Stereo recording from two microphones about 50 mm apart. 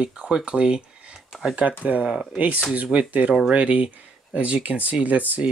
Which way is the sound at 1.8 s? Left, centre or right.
Right.